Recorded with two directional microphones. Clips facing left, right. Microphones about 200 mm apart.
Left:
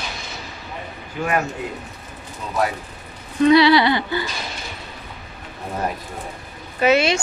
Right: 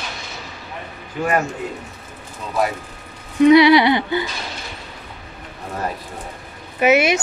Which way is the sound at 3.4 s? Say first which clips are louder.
Right 3 dB; 20° right (ahead or behind).